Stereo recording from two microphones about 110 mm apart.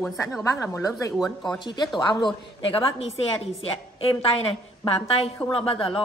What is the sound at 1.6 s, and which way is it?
Speech, 40° left (ahead or behind).